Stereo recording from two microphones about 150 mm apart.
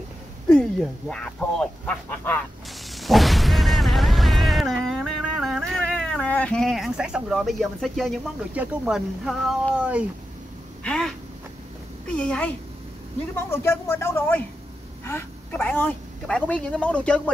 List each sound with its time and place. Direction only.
0.5 s a woman's voice: 5° left (ahead or behind)
2.9 s a sound: centre (ahead or behind)
8.5 s speech: 5° right (ahead or behind)
10.8 s a sound: 5° left (ahead or behind)
12.2 s a woman's voice: 10° left (ahead or behind)
13.5 s a woman's voice: 15° left (ahead or behind)